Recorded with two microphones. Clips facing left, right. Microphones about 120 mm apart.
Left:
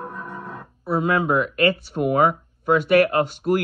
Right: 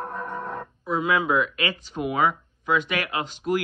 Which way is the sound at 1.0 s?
45° left (ahead or behind).